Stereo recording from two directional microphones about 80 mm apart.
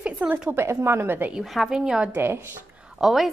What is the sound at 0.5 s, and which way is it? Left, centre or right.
Speech, right.